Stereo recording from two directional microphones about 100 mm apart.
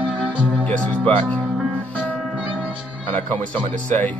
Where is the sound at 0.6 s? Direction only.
15° left (ahead or behind).